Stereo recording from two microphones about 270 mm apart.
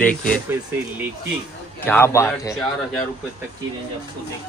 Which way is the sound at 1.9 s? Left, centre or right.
Centre.